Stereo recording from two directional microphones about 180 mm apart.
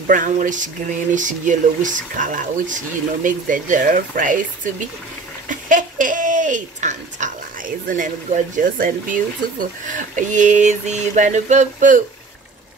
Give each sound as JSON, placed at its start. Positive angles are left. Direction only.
{"t": 0.0, "sound": "speech", "side_deg": -45}